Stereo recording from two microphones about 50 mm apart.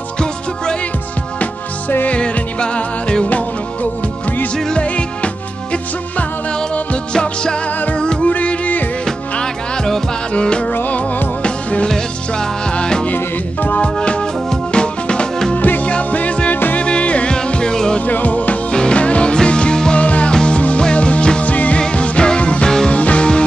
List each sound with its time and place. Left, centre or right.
2.0 s music: left
4.8 s music: left
8.3 s music: left
9.0 s music: centre
10.7 s music: left; by 13.0 s centre
13.0 s music: left
13.9 s music: left
15.5 s music: left
16.5 s music: left
16.8 s music: left
18.0 s music: left; by 22.9 s centre
22.9 s music: left